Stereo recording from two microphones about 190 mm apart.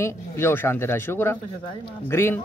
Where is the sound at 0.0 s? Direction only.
10° left (ahead or behind).